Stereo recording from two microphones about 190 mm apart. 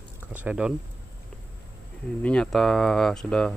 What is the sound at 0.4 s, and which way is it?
Speech, 5° right (ahead or behind).